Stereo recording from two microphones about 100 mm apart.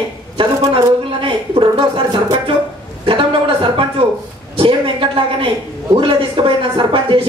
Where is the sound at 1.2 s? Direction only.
60° right (ahead or behind).